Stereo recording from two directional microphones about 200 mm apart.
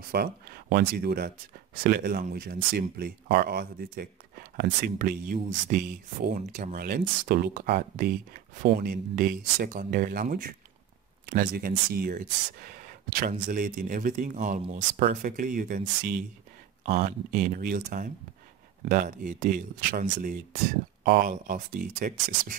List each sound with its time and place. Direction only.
0.1 s speech: 50° right (ahead or behind)